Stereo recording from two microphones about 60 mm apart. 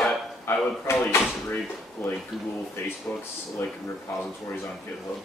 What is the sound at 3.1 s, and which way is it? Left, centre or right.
Speech, left.